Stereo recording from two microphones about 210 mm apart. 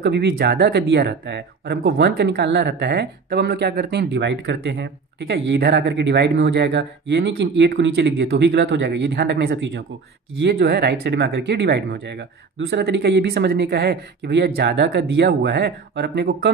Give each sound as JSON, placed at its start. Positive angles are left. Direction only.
{"t": 0.0, "sound": "speech", "side_deg": -55}